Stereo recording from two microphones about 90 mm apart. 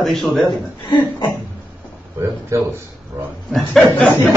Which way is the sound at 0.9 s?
60° left (ahead or behind).